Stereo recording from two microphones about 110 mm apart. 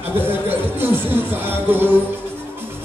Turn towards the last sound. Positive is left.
turn(degrees=-20)  # may be behind; listen again after turning